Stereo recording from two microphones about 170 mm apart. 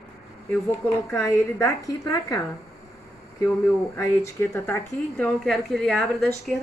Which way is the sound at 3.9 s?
15° left (ahead or behind).